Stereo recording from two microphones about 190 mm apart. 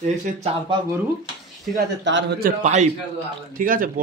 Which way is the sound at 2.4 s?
40° right (ahead or behind).